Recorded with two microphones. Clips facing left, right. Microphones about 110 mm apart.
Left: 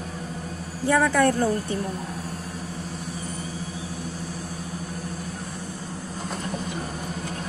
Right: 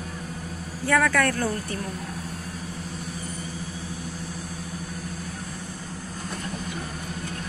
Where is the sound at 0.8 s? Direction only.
20° left (ahead or behind).